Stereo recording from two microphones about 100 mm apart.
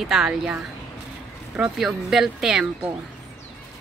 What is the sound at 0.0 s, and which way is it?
Speech, 5° right (ahead or behind).